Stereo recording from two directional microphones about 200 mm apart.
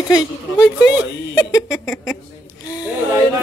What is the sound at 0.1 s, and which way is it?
Speech, 20° left (ahead or behind).